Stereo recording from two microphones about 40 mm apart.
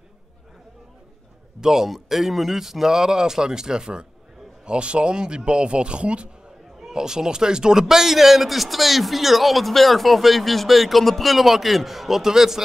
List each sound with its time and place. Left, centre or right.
1.6 s speech: centre; by 6.3 s right
6.9 s a man's voice: centre